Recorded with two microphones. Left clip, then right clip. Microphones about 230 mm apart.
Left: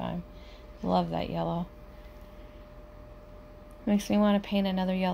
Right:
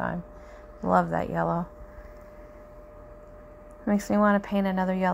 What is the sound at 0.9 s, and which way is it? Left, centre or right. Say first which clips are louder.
Speech: right 5 dB; right.